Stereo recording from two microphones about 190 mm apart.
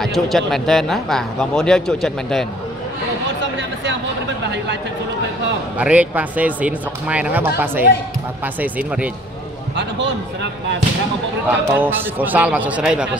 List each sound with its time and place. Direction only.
0.0 s speech: centre (ahead or behind)
3.5 s a sound: 70° right (ahead or behind)
5.8 s speech: 5° right (ahead or behind)
9.8 s a man's voice: 70° right (ahead or behind)
11.4 s speech: 10° right (ahead or behind)